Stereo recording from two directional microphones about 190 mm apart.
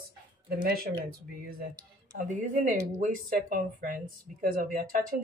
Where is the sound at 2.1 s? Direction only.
40° right (ahead or behind).